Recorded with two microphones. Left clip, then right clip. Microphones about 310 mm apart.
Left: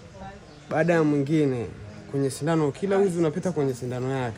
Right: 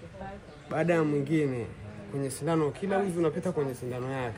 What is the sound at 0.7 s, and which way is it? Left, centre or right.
Speech, left.